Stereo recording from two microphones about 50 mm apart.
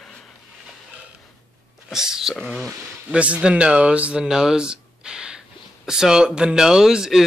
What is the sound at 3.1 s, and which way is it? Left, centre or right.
Speech, right.